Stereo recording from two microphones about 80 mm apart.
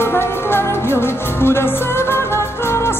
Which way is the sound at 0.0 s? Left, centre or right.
Left.